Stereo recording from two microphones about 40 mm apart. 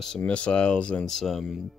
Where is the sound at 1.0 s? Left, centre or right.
Centre.